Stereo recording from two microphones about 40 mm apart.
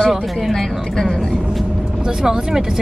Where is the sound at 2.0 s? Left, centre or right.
Centre.